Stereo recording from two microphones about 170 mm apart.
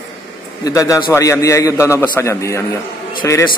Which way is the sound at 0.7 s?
20° left (ahead or behind).